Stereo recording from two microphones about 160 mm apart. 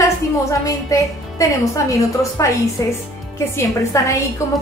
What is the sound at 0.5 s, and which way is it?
A woman's voice, 20° left (ahead or behind).